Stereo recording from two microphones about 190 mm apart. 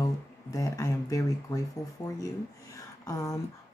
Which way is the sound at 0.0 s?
20° left (ahead or behind).